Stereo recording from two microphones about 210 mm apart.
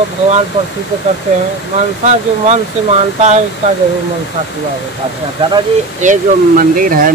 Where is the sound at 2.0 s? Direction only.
30° right (ahead or behind).